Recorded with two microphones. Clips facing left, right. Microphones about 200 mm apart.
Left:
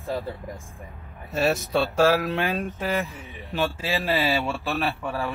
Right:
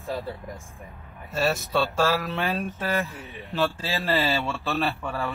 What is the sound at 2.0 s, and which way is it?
Speech, 15° left (ahead or behind).